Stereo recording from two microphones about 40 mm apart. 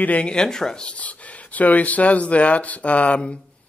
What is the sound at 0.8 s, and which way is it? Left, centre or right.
Speech, left.